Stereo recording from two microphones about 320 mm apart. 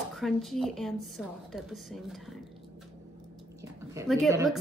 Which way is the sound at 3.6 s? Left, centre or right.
Centre.